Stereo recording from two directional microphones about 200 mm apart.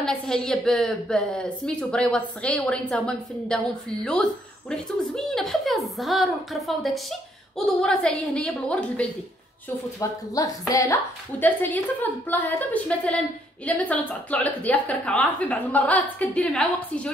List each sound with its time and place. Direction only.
0.0 s a woman's voice: 5° left (ahead or behind)
9.9 s a woman's voice: 15° left (ahead or behind)